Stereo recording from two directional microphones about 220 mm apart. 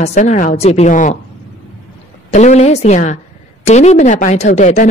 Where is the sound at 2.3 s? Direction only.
30° left (ahead or behind).